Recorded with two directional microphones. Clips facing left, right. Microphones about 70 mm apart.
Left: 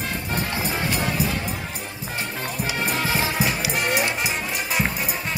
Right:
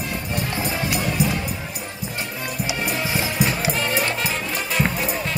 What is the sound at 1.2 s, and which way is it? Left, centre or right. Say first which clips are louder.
Music: right 3 dB; left.